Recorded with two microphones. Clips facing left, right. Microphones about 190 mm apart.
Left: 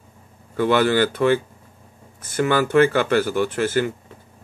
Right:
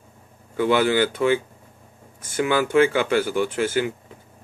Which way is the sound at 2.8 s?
50° left (ahead or behind).